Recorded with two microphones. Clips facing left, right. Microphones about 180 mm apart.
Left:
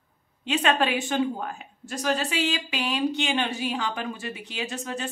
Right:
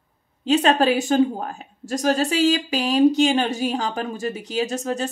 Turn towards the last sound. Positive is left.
turn(degrees=-40)  # may be behind; listen again after turning